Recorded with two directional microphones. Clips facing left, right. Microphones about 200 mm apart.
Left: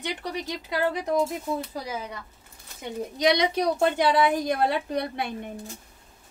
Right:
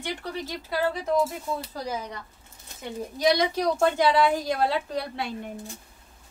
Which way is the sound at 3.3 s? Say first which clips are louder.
Even; 20° left (ahead or behind).